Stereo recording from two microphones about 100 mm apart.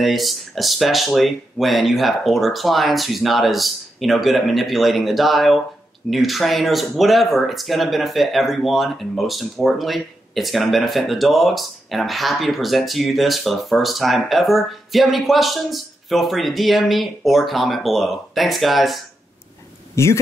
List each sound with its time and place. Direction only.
0.0 s speech: centre (ahead or behind)
20.0 s speech: 30° left (ahead or behind)